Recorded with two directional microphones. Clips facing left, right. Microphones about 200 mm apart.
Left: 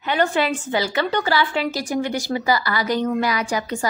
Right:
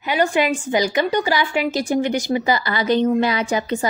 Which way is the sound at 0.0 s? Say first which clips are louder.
Right 2 dB; 10° right (ahead or behind).